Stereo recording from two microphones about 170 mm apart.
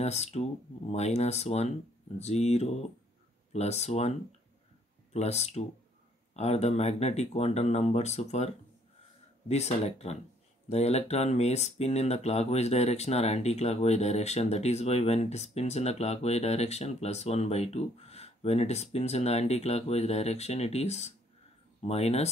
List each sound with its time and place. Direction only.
0.0 s speech: 40° left (ahead or behind)
5.1 s speech: 40° left (ahead or behind)
9.5 s speech: 40° left (ahead or behind)